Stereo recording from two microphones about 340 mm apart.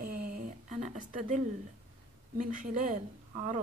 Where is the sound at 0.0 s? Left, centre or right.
Right.